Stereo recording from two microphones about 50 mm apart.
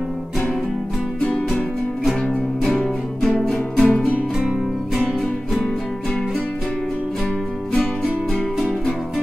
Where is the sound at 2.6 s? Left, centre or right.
Centre.